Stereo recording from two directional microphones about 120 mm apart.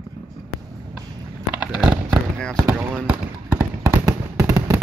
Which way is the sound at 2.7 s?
15° right (ahead or behind).